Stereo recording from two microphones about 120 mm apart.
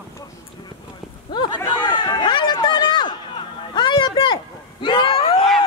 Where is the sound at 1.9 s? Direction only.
40° left (ahead or behind).